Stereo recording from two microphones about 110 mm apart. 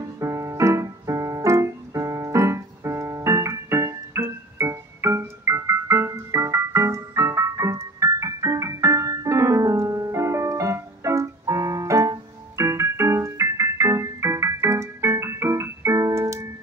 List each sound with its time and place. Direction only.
0.2 s piano: 25° right (ahead or behind)